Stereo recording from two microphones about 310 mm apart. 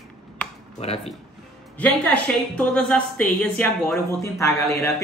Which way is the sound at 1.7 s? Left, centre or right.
Centre.